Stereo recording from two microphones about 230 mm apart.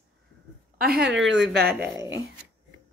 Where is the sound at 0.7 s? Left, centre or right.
Right.